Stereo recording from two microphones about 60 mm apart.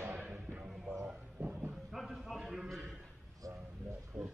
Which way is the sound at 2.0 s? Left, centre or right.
Centre.